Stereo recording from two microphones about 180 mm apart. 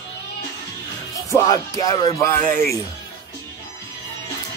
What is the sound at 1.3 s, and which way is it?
Music, 20° left (ahead or behind).